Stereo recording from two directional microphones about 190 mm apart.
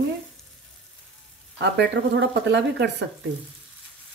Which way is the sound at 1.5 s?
65° right (ahead or behind).